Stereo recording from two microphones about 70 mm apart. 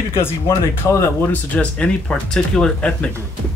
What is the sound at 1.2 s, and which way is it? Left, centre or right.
Speech, centre.